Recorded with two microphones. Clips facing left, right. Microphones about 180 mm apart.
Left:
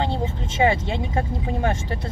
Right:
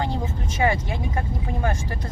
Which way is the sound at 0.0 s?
25° left (ahead or behind).